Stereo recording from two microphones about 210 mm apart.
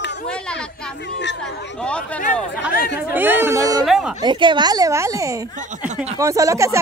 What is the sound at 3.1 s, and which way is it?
Speech, 10° right (ahead or behind).